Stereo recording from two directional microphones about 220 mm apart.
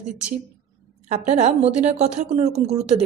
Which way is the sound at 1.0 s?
30° right (ahead or behind).